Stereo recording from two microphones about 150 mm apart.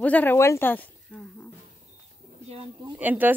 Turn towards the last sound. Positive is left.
turn(degrees=-10)  # may be behind; listen again after turning